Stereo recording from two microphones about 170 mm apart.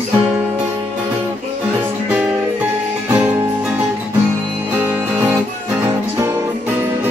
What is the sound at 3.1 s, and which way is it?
Music, 10° right (ahead or behind).